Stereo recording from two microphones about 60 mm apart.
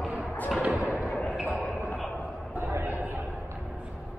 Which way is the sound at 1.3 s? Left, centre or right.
Centre.